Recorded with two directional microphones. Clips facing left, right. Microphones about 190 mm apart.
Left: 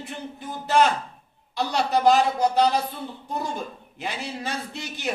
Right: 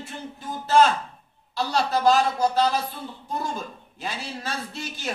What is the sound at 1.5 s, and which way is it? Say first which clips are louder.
Speech: left 1 dB; 15° left (ahead or behind).